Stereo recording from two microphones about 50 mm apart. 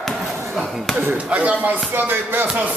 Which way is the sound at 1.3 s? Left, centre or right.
Right.